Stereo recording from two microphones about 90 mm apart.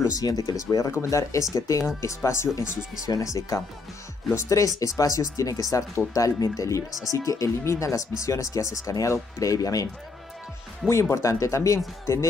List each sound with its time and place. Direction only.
0.0 s speech: 40° left (ahead or behind)
10.9 s speech: 35° left (ahead or behind)